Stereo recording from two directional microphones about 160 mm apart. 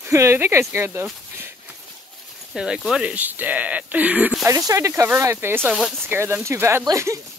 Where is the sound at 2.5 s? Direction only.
5° right (ahead or behind).